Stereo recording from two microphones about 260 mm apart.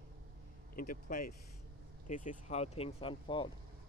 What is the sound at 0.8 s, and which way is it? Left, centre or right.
Speech, left.